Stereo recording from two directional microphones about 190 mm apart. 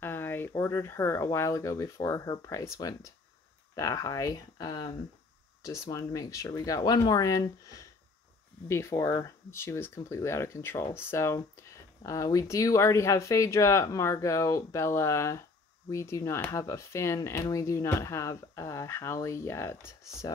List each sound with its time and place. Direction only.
0.0 s speech: 10° left (ahead or behind)